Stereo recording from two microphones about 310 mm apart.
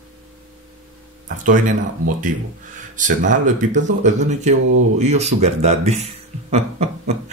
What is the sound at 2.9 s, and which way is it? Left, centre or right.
Speech, right.